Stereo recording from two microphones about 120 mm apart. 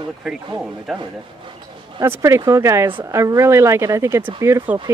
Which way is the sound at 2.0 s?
20° right (ahead or behind).